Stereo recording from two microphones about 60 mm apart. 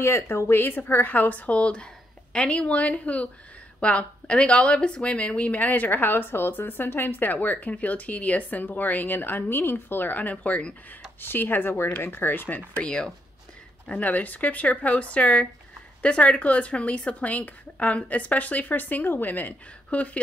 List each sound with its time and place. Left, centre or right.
0.0 s speech: left
11.1 s speech: left
12.7 s speech: centre